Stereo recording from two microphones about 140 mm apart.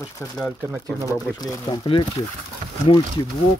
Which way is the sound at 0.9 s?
Centre (ahead or behind).